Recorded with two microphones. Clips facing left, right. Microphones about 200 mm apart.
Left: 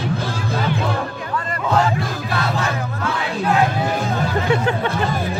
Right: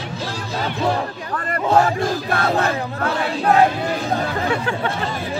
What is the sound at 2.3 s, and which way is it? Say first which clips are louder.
Battle cry: right 1 dB; 50° right (ahead or behind).